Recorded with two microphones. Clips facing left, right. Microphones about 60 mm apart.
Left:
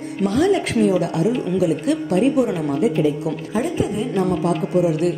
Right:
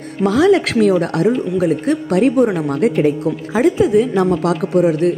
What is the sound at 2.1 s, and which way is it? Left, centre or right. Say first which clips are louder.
Speech: right 5 dB; right.